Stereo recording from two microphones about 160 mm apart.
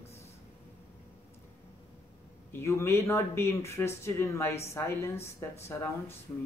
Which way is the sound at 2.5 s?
15° left (ahead or behind).